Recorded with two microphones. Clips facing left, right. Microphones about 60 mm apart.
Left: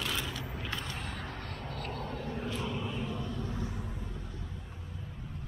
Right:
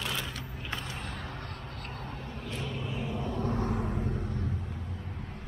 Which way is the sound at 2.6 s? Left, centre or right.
Centre.